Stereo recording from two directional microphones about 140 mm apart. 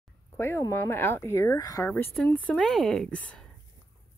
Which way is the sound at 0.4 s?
20° left (ahead or behind).